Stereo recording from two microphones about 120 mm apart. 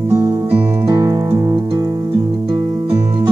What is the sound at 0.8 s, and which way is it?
Music, 25° right (ahead or behind).